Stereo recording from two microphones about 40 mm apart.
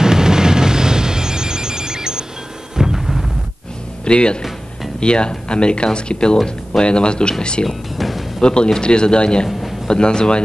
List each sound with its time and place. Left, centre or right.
0.0 s music: centre
4.0 s speech: left
7.6 s music: centre
8.4 s speech: left